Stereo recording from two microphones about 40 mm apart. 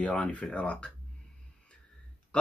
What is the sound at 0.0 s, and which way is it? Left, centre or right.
Speech, left.